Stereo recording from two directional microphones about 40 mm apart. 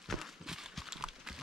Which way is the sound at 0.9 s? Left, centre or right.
Centre.